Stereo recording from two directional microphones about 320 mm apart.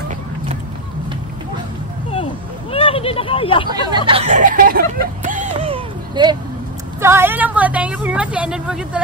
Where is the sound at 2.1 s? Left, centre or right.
Centre.